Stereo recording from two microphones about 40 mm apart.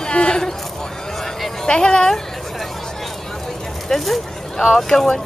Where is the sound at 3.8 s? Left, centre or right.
Centre.